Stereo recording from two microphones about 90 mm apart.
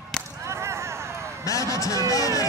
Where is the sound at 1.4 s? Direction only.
40° left (ahead or behind).